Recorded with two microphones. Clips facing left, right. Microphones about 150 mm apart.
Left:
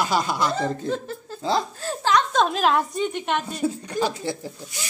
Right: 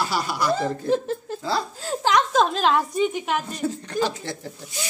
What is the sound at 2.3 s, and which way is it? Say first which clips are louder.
A woman's voice: even; centre (ahead or behind).